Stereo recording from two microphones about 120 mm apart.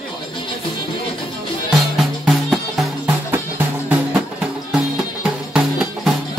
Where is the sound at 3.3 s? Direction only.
25° right (ahead or behind).